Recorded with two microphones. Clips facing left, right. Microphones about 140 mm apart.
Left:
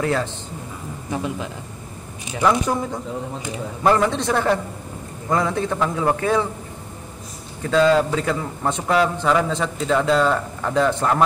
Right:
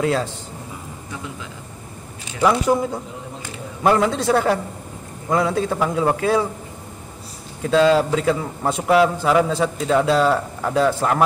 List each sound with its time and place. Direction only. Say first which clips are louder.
0.0 s a man's voice: right 1 dB; 15° right (ahead or behind)
1.1 s speech: left 8 dB; 65° left (ahead or behind)
2.4 s a man's voice: right 2 dB; 10° right (ahead or behind)
7.7 s a man's voice: right 1 dB; 10° right (ahead or behind)